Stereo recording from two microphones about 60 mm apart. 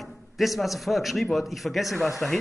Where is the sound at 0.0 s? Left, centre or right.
Centre.